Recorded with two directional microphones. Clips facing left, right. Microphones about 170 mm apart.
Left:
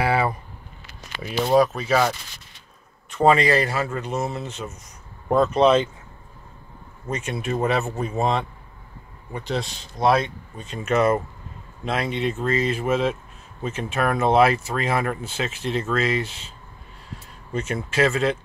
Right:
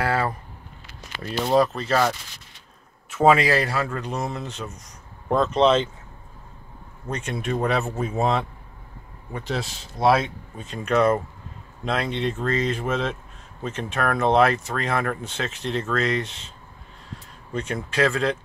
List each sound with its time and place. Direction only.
1.2 s speech: 5° left (ahead or behind)
7.1 s speech: 5° left (ahead or behind)